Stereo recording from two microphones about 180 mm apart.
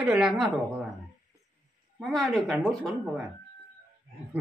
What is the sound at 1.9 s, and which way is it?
Speech, centre (ahead or behind).